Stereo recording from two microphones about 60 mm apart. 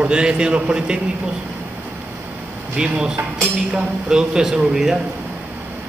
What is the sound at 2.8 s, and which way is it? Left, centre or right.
A man's voice, centre.